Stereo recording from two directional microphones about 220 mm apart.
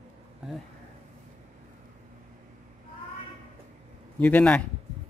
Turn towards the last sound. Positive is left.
turn(degrees=5)  # may be behind; listen again after turning